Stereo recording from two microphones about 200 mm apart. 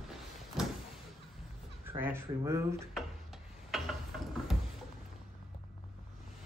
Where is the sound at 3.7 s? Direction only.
Centre (ahead or behind).